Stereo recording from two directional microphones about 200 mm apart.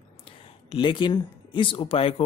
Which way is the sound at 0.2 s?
25° left (ahead or behind).